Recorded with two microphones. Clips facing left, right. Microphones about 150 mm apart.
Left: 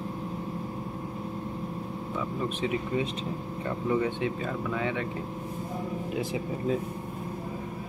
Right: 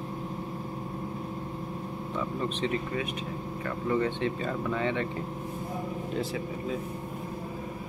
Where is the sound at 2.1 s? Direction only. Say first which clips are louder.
Even; 10° left (ahead or behind).